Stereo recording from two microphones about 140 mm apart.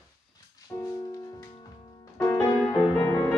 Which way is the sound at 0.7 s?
25° left (ahead or behind).